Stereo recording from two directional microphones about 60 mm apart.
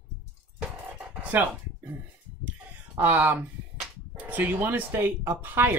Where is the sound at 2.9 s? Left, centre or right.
Right.